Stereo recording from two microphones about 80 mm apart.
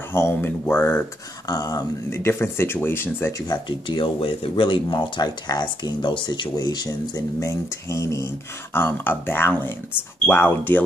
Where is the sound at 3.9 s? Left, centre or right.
Left.